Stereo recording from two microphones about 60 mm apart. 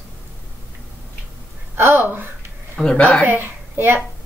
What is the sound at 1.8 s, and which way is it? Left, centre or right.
Speech, right.